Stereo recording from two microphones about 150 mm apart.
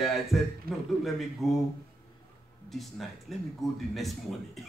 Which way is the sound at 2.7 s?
Centre (ahead or behind).